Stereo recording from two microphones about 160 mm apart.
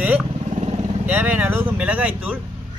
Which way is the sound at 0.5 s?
45° right (ahead or behind).